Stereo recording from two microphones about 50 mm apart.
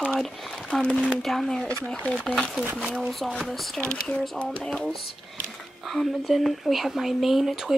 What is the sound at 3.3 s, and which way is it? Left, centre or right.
Speech, centre.